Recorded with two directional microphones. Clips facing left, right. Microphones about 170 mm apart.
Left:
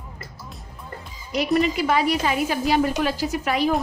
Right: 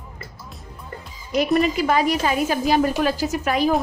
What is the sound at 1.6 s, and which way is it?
A woman's voice, 45° right (ahead or behind).